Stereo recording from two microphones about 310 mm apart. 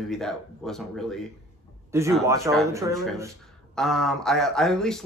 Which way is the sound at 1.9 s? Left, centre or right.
Centre.